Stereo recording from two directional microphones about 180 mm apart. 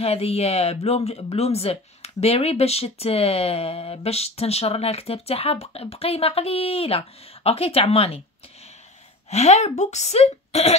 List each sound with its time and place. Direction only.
0.0 s speech: 35° left (ahead or behind)
9.3 s speech: 40° left (ahead or behind)